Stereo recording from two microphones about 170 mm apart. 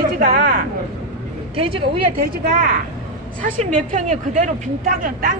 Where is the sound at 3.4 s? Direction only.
45° right (ahead or behind).